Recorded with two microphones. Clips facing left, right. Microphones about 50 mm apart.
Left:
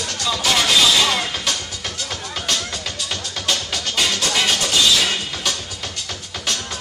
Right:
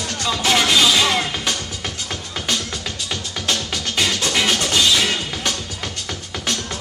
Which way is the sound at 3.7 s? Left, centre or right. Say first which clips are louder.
Even; centre.